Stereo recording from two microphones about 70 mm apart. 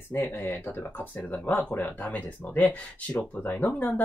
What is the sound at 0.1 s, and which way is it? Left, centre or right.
Speech, left.